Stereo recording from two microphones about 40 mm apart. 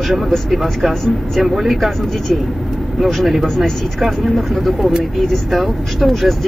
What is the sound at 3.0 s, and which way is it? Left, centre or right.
Speech, centre.